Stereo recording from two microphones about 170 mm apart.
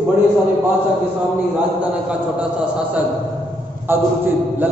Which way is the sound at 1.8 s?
10° right (ahead or behind).